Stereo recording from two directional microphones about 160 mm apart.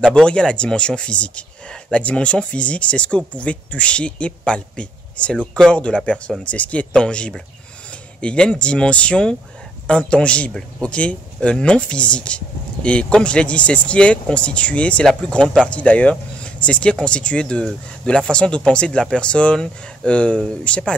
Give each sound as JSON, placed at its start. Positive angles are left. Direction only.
{"t": 0.1, "sound": "speech", "side_deg": 5}